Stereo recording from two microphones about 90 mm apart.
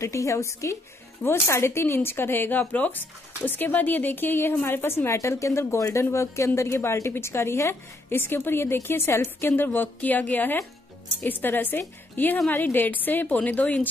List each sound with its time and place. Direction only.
0.0 s a woman's voice: 35° left (ahead or behind); by 13.8 s 15° left (ahead or behind)